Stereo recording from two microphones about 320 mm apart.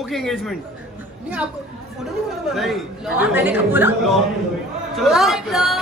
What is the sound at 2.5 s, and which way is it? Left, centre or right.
A woman's voice, centre.